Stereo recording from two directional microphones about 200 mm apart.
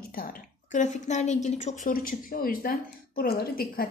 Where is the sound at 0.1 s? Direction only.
45° left (ahead or behind).